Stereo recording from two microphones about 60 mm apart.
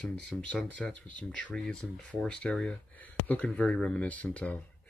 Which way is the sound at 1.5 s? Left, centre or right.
Centre.